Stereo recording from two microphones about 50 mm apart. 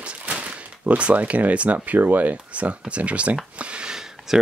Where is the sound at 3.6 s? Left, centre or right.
Right.